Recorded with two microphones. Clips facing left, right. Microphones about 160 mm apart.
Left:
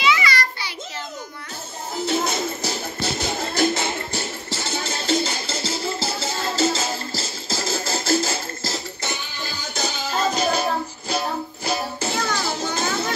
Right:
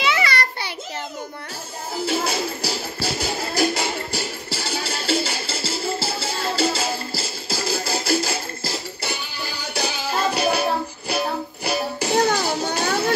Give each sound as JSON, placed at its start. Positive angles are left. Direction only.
{"t": 0.0, "sound": "a sound", "side_deg": -55}
{"t": 2.0, "sound": "music", "side_deg": -10}
{"t": 12.1, "sound": "music", "side_deg": -40}